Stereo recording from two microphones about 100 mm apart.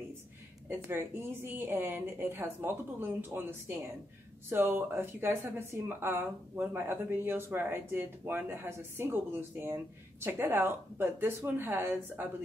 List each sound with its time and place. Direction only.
0.7 s speech: 20° right (ahead or behind)